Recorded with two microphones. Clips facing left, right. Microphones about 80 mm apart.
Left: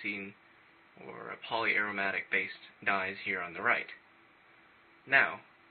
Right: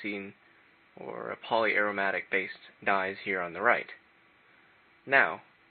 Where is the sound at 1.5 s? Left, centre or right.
Right.